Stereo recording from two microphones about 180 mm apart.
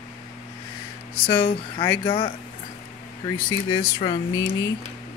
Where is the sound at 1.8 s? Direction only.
25° left (ahead or behind).